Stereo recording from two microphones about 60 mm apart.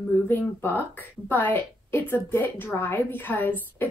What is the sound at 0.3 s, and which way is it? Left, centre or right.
A woman's voice, left.